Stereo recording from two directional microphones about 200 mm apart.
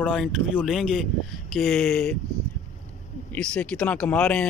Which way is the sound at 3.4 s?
5° left (ahead or behind).